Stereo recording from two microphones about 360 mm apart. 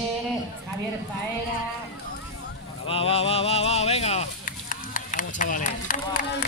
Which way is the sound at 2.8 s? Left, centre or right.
Centre.